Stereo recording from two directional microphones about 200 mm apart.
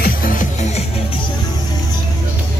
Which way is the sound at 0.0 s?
45° left (ahead or behind).